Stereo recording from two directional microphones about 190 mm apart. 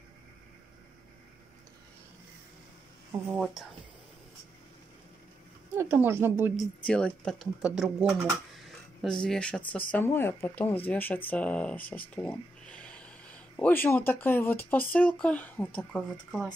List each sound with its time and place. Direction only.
3.1 s a woman's voice: 10° right (ahead or behind)
5.8 s a woman's voice: 10° right (ahead or behind)
6.5 s speech: centre (ahead or behind)